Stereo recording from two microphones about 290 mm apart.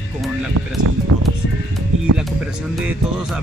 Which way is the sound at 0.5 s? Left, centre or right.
Right.